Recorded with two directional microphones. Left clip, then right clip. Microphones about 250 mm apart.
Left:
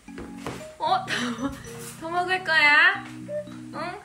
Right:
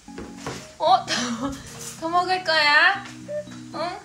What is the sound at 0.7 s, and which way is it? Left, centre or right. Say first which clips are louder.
Music: right 5 dB; centre.